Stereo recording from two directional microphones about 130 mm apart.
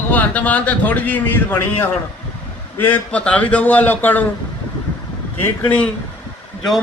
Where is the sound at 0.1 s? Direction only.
15° left (ahead or behind).